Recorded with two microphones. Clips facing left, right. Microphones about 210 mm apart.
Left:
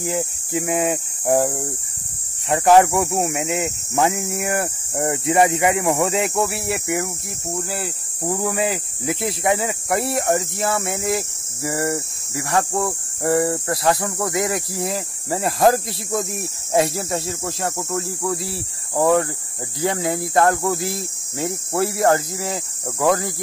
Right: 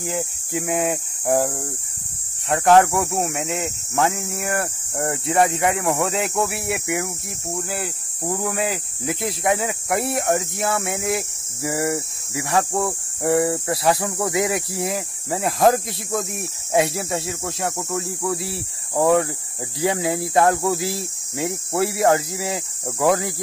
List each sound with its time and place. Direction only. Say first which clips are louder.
0.6 s speech: left 2 dB; centre (ahead or behind)
14.2 s speech: right 1 dB; 20° right (ahead or behind)
14.9 s speech: left 1 dB; centre (ahead or behind)